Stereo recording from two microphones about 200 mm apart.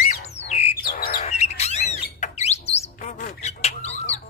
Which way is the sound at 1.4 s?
35° left (ahead or behind).